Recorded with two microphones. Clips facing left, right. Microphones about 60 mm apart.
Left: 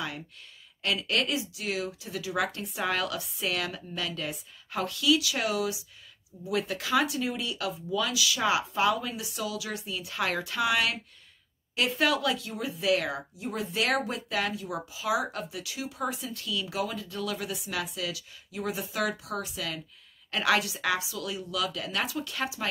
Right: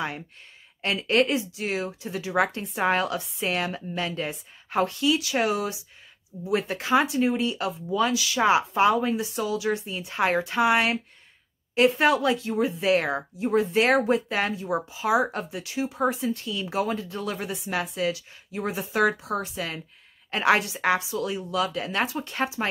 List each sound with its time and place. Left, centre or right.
0.8 s speech: right